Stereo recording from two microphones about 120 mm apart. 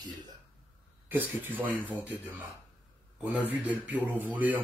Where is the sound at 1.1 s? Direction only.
15° right (ahead or behind).